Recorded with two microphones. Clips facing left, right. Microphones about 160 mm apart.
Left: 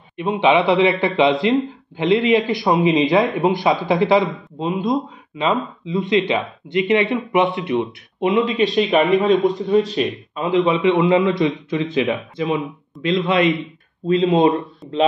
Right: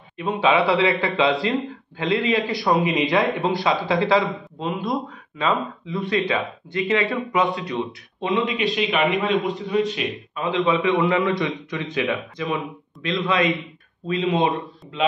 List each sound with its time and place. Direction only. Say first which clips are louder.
0.2 s a man's voice: left 3 dB; 20° left (ahead or behind)
8.3 s a man's voice: left 5 dB; 35° left (ahead or behind)